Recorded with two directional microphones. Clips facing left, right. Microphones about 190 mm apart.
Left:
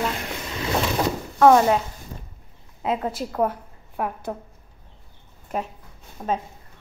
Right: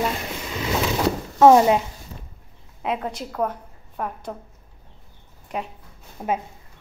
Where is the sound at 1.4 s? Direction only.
20° right (ahead or behind).